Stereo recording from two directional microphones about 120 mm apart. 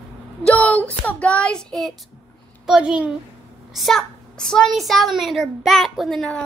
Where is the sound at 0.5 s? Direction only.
10° left (ahead or behind).